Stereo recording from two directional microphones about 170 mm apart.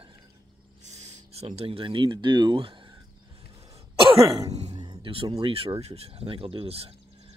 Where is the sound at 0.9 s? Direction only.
40° right (ahead or behind).